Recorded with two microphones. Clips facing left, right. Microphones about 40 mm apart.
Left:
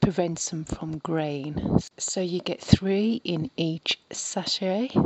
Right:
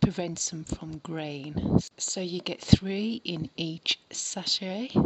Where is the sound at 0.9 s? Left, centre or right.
Left.